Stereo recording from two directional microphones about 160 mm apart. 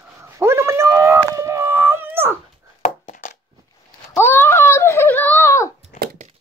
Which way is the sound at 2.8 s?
55° left (ahead or behind).